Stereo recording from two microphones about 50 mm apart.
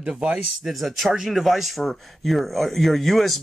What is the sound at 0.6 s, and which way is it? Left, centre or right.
Speech, centre.